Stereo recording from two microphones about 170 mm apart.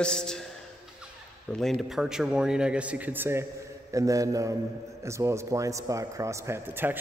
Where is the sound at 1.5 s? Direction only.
5° left (ahead or behind).